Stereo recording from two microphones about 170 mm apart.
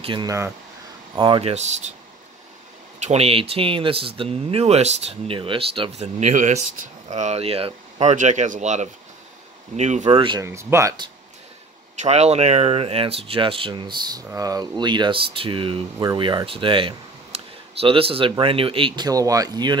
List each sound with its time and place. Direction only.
0.0 s speech: 30° right (ahead or behind)
3.0 s speech: 40° right (ahead or behind)
10.1 s speech: 30° right (ahead or behind)
10.4 s speech: 15° right (ahead or behind)
12.0 s speech: 40° right (ahead or behind); by 19.8 s 25° right (ahead or behind)